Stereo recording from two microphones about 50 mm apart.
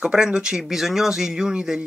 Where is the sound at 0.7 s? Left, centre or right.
Centre.